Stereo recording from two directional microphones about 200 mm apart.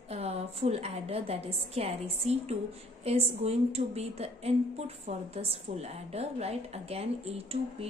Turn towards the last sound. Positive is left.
turn(degrees=-30)  # may be behind; listen again after turning